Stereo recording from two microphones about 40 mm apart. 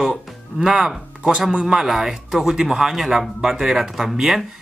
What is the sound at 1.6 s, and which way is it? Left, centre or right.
Speech, centre.